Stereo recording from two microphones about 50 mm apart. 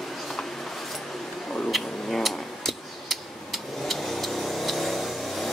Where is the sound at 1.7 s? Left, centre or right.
Centre.